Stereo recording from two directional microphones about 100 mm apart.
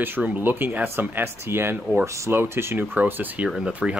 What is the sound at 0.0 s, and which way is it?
Speech, 15° right (ahead or behind).